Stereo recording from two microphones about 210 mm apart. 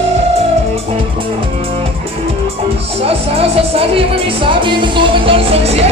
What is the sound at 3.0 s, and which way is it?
Music, 30° right (ahead or behind).